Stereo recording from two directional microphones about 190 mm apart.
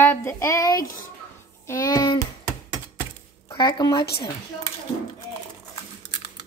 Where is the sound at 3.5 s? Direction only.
25° left (ahead or behind).